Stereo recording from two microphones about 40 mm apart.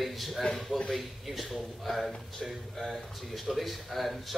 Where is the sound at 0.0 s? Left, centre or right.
Centre.